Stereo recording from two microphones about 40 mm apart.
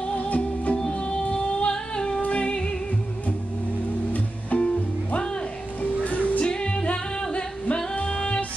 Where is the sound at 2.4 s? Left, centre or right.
Left.